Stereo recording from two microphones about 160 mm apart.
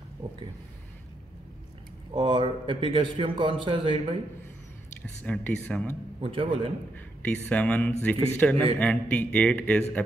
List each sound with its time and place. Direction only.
0.2 s a man's voice: 30° right (ahead or behind)
2.1 s a man's voice: 30° right (ahead or behind)
5.2 s a man's voice: 10° left (ahead or behind)
6.2 s a man's voice: 35° right (ahead or behind)
7.2 s a man's voice: 10° left (ahead or behind)